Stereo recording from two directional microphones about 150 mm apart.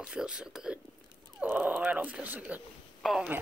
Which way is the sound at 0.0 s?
5° right (ahead or behind).